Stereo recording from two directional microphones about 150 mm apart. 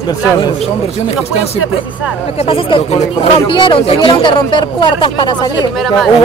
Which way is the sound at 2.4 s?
40° left (ahead or behind).